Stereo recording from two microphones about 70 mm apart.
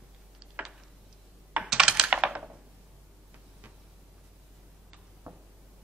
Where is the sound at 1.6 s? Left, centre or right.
Centre.